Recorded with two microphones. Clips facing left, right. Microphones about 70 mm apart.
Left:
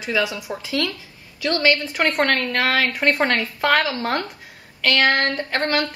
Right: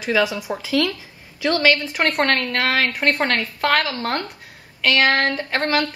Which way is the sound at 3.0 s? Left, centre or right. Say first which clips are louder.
Left 1 dB; centre.